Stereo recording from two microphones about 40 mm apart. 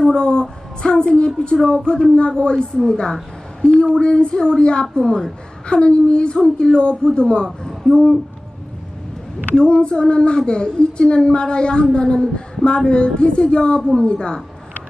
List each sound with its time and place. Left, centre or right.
0.1 s speech: left
3.8 s speech: centre
9.6 s speech: left